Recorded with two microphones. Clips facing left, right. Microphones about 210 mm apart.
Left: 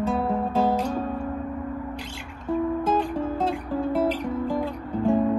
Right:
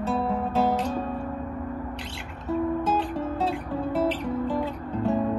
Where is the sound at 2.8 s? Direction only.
10° left (ahead or behind).